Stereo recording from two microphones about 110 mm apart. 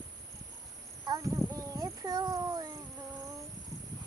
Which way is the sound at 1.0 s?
30° right (ahead or behind).